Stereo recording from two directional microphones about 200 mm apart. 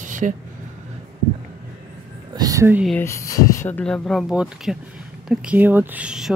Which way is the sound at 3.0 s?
15° left (ahead or behind).